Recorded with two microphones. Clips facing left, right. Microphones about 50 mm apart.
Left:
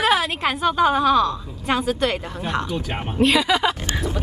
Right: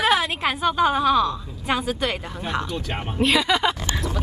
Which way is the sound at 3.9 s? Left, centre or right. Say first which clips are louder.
Left 2 dB; left.